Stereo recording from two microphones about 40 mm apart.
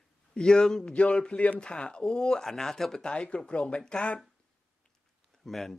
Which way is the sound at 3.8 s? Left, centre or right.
Centre.